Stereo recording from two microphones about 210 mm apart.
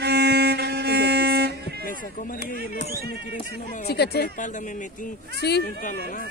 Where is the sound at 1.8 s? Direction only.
40° left (ahead or behind).